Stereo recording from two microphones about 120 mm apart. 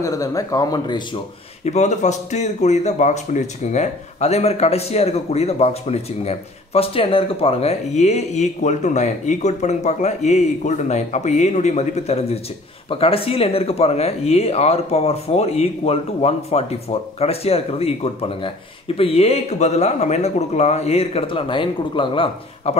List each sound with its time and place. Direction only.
0.0 s speech: 30° left (ahead or behind)
1.6 s speech: 70° left (ahead or behind)
12.9 s speech: 50° left (ahead or behind)